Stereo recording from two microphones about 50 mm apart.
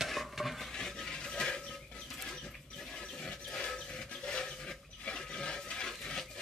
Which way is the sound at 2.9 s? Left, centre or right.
Centre.